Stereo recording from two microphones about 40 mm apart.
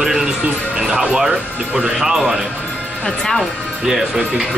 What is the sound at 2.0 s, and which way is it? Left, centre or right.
Speech, centre.